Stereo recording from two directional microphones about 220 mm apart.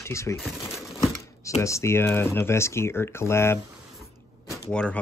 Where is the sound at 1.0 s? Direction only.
15° left (ahead or behind).